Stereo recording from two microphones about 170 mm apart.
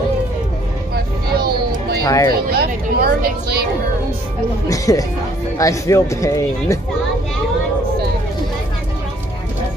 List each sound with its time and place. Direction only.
0.9 s vehicle: 65° right (ahead or behind)
2.0 s a man's voice: 20° left (ahead or behind)
2.3 s speech: 65° right (ahead or behind)
4.6 s a man's voice: 20° left (ahead or behind)